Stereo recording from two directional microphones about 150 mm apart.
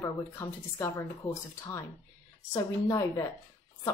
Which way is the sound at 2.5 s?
25° left (ahead or behind).